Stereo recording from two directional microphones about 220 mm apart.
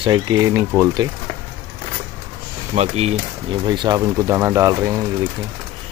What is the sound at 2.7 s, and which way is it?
Speech, 30° right (ahead or behind).